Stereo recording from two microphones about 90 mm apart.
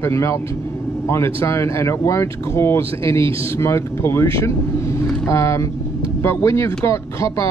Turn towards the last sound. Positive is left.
turn(degrees=35)  # may be behind; listen again after turning